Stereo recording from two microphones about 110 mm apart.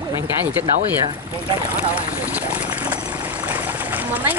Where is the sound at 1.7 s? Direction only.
15° right (ahead or behind).